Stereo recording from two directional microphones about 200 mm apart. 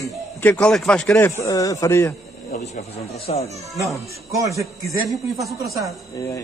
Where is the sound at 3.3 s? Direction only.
30° left (ahead or behind).